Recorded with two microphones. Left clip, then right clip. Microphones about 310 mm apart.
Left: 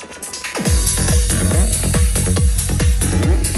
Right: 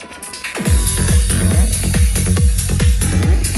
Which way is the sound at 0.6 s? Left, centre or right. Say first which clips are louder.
Left 2 dB; left.